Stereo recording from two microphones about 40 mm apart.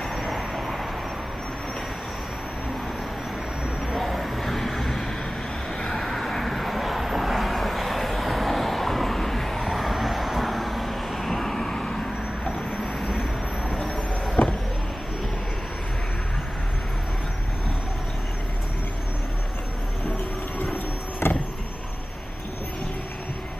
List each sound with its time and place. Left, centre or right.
0.1 s vehicle: centre
3.8 s vehicle: centre
13.0 s train: centre
13.7 s a sound: centre
14.4 s vehicle: left
21.2 s vehicle: left